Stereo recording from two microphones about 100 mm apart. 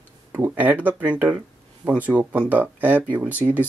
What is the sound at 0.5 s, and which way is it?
Speech, 15° right (ahead or behind).